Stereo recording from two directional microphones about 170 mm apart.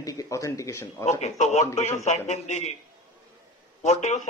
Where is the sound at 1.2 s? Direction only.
40° left (ahead or behind).